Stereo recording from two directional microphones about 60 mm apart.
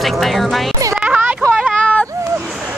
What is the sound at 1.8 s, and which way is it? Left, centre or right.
Vehicle, centre.